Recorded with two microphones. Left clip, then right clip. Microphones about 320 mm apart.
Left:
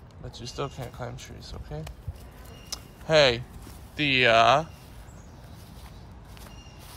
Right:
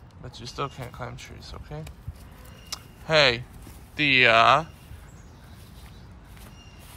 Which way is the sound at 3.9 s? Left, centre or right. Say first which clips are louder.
Right 2 dB; centre.